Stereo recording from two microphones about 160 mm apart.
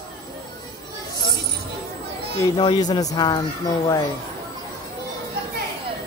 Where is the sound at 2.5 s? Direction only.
25° left (ahead or behind).